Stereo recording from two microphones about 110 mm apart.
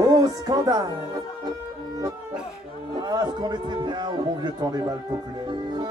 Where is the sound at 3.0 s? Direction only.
40° right (ahead or behind).